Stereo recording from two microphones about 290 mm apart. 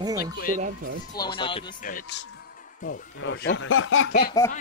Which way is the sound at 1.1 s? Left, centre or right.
Centre.